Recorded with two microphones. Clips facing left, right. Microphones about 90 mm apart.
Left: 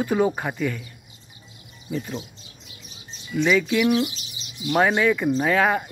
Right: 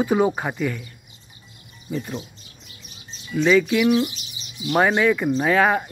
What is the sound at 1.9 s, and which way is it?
Speech, 5° right (ahead or behind).